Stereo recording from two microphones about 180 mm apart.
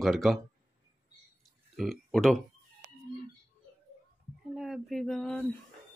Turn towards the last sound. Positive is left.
turn(degrees=5)  # may be behind; listen again after turning